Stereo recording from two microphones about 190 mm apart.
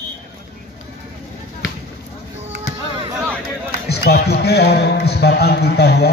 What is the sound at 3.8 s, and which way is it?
A man's voice, 60° left (ahead or behind).